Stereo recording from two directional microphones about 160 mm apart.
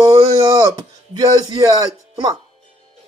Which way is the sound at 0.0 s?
25° right (ahead or behind).